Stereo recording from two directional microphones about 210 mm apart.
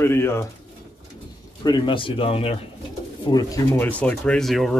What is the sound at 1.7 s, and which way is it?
Speech, 20° left (ahead or behind).